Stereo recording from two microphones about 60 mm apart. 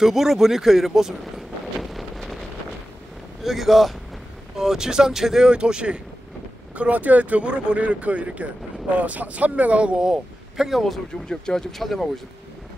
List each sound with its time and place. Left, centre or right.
0.0 s speech: centre
1.8 s wind noise: centre
3.4 s speech: centre
10.6 s speech: centre
11.2 s speech: centre